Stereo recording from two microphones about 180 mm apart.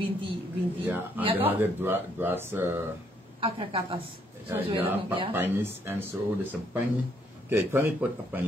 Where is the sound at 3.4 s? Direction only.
25° right (ahead or behind).